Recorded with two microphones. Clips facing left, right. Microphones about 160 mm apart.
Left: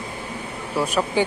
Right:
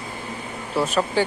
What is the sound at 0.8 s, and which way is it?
Speech, 15° left (ahead or behind).